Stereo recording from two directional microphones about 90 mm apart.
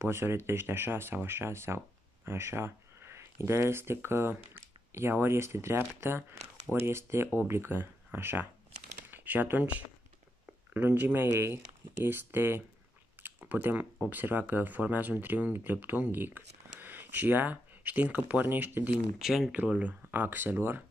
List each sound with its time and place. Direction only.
0.0 s speech: 30° right (ahead or behind)
13.2 s a sound: 20° right (ahead or behind)
14.1 s speech: 20° right (ahead or behind)
19.2 s speech: 5° right (ahead or behind)
19.5 s speech: 15° right (ahead or behind)